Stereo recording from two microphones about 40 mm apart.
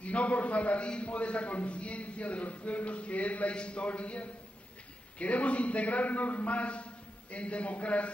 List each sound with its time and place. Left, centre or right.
0.0 s a man's voice: left
3.5 s a man's voice: left